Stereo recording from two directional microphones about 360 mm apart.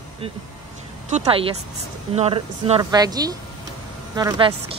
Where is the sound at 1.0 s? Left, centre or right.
Centre.